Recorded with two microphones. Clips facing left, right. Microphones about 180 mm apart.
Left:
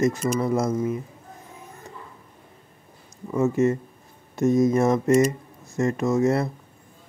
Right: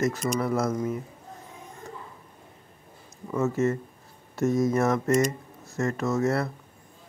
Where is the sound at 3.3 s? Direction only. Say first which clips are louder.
Left 4 dB; 15° left (ahead or behind).